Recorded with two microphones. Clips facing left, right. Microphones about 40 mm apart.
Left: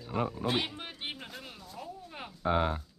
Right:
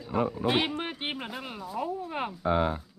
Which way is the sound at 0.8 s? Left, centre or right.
Right.